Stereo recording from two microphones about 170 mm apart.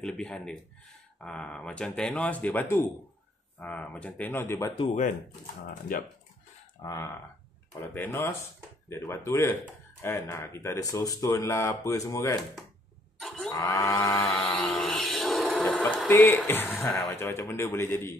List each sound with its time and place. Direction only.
0.0 s speech: 5° left (ahead or behind)
6.8 s a sound: 20° left (ahead or behind)
7.9 s speech: 15° left (ahead or behind)
13.5 s cattle: 20° left (ahead or behind)
14.6 s a sound: centre (ahead or behind)
16.4 s speech: 10° left (ahead or behind)